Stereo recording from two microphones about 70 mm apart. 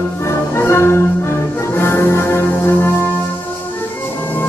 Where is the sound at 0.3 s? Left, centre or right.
Left.